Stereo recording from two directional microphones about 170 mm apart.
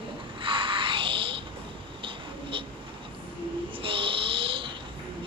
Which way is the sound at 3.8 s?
30° right (ahead or behind).